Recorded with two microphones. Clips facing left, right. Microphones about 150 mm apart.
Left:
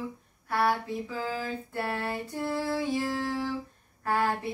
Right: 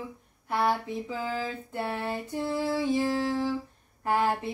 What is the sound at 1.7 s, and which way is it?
Music, 20° right (ahead or behind).